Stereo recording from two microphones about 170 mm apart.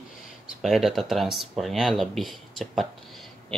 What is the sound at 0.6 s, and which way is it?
Speech, centre (ahead or behind).